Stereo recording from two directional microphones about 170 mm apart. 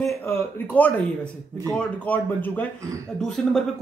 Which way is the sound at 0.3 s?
10° left (ahead or behind).